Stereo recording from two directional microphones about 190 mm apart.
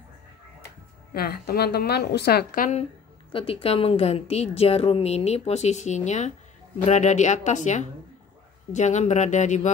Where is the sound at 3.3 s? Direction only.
30° left (ahead or behind).